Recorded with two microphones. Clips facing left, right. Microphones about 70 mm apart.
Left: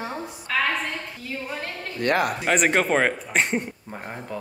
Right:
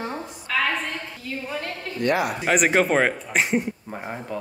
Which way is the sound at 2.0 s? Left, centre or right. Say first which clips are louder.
Even; left.